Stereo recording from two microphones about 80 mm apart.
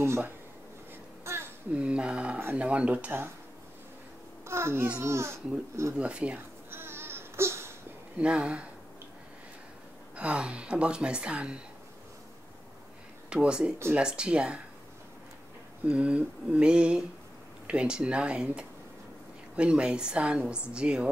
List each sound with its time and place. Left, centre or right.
1.2 s babbling: right
1.8 s speech: centre
4.5 s a child's voice: right
5.9 s speech: centre
6.7 s a sound: right
8.2 s speech: centre
10.1 s speech: centre
13.3 s speech: centre
15.8 s speech: centre